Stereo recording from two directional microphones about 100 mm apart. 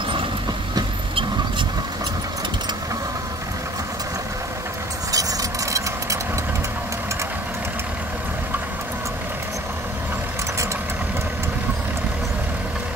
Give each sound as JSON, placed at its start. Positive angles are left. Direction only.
{"t": 5.1, "sound": "vehicle", "side_deg": -35}